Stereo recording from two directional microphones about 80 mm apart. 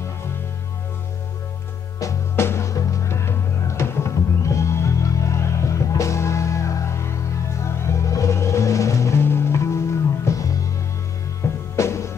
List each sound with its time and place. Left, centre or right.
2.0 s music: left